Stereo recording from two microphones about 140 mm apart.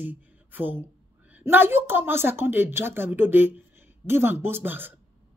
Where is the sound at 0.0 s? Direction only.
10° right (ahead or behind).